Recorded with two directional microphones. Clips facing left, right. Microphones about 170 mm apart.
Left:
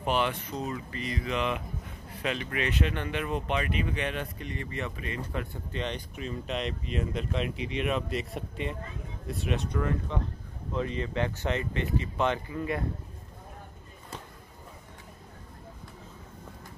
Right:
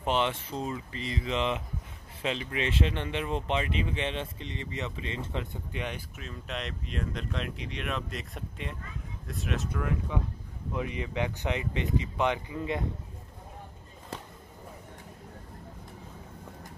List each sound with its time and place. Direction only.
0.0 s speech: 25° right (ahead or behind)